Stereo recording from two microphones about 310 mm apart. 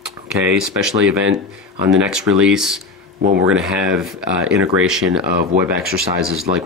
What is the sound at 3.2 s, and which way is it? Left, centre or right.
Speech, right.